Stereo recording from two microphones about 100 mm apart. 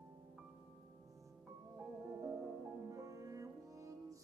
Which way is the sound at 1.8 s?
25° right (ahead or behind).